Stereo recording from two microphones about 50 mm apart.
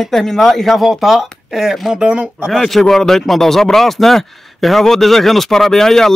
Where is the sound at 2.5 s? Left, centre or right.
Centre.